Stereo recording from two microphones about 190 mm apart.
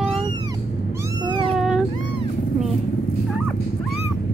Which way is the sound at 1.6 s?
Centre (ahead or behind).